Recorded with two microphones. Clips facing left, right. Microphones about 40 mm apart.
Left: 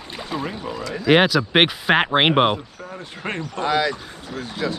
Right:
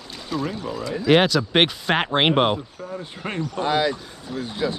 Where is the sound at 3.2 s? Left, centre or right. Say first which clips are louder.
Even; left.